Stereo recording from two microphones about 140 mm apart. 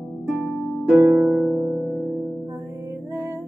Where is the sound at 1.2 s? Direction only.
Centre (ahead or behind).